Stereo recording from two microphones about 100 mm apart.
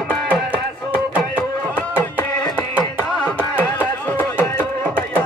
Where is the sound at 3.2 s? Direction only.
15° left (ahead or behind).